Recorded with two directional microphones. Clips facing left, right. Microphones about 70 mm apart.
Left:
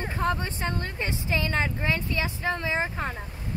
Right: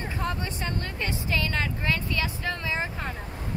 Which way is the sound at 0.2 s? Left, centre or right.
Left.